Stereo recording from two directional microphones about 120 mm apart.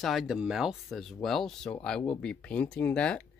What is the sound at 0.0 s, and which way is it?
Speech, centre (ahead or behind).